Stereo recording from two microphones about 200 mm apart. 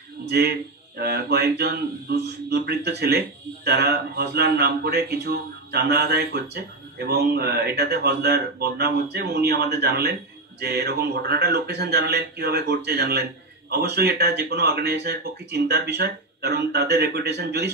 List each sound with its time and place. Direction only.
0.2 s speech: 55° right (ahead or behind)